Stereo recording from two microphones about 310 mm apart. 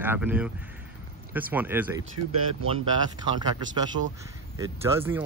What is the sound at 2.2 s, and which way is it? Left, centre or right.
Speech, right.